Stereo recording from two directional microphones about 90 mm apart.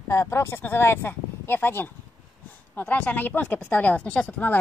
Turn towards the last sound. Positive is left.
turn(degrees=20)  # may be behind; listen again after turning